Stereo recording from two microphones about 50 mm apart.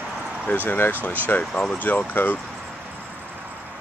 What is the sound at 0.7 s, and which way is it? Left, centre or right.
Speech, left.